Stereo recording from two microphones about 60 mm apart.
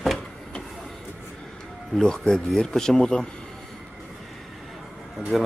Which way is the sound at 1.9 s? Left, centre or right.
Centre.